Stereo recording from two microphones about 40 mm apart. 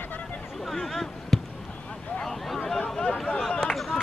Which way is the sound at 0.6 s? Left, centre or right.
Centre.